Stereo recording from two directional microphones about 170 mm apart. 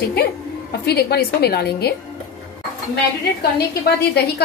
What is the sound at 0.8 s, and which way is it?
A woman's voice, 70° left (ahead or behind).